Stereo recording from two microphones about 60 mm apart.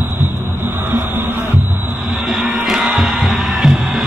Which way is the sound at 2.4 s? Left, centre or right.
Centre.